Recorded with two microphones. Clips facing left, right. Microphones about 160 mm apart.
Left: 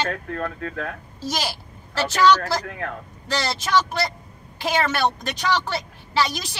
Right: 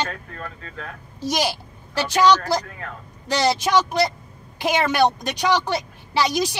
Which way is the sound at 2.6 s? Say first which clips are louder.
Left 5 dB; 60° left (ahead or behind).